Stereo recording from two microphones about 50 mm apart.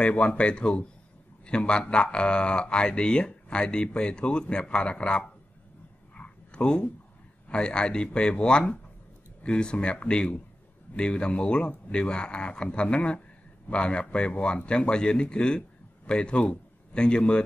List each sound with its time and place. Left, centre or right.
0.0 s speech: left
6.1 s dog: left
7.4 s speech: centre